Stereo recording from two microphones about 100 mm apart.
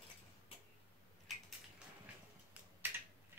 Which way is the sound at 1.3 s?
Centre (ahead or behind).